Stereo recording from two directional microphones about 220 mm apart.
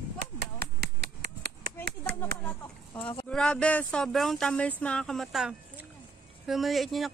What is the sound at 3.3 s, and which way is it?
Speech, 5° left (ahead or behind).